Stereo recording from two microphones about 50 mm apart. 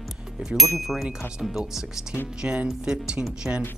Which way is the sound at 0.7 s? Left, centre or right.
Centre.